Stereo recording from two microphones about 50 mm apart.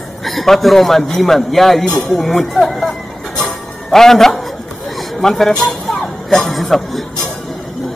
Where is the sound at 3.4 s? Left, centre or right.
Centre.